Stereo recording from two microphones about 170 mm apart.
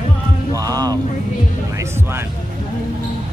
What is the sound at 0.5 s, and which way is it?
Music, 20° right (ahead or behind).